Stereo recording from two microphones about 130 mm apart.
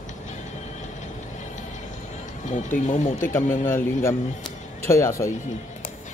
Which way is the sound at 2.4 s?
70° left (ahead or behind).